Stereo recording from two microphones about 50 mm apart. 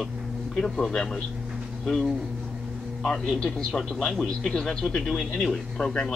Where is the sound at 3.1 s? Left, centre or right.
Centre.